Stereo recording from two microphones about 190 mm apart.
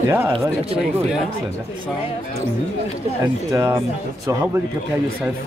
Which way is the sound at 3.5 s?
15° right (ahead or behind).